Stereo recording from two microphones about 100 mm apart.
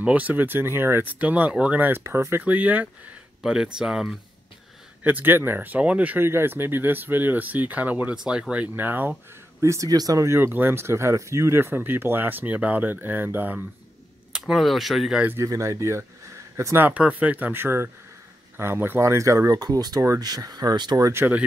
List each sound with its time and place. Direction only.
0.0 s speech: 15° right (ahead or behind)
1.2 s speech: 15° right (ahead or behind)
5.0 s speech: 20° right (ahead or behind)
9.6 s speech: 30° right (ahead or behind)
14.3 s speech: 5° right (ahead or behind)
15.4 s speech: 35° right (ahead or behind)
21.1 s speech: 25° right (ahead or behind)